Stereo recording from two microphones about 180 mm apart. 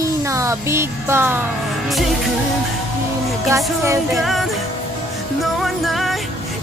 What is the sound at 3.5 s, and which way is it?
Speech, 15° right (ahead or behind).